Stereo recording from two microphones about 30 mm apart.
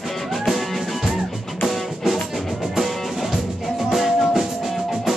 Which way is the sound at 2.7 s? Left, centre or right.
Centre.